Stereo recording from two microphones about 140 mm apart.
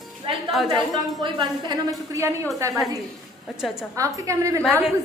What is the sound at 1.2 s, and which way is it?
A woman's voice, 30° right (ahead or behind).